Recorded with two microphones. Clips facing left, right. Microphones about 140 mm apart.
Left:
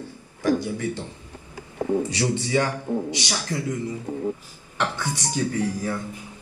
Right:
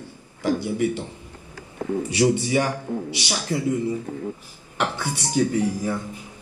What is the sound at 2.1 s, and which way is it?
Speech, 15° right (ahead or behind).